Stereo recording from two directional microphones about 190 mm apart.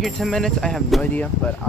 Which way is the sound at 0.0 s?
Centre (ahead or behind).